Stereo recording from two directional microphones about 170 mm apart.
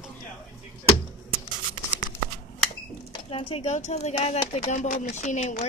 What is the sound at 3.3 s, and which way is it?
Speech, 35° left (ahead or behind).